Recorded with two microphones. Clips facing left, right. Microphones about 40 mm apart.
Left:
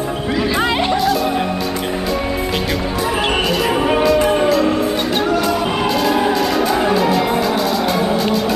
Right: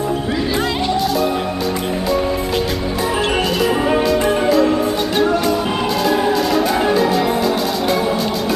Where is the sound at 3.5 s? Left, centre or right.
Centre.